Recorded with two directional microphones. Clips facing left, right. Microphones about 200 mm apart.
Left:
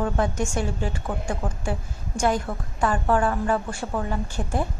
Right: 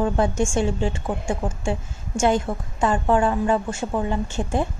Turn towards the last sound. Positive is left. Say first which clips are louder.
# right 4 dB
turn(degrees=-25)  # may be behind; listen again after turning